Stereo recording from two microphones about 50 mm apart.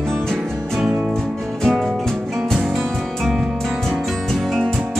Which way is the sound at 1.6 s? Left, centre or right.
Centre.